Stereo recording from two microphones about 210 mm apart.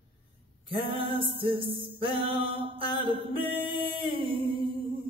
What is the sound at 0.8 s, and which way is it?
Music, 25° right (ahead or behind).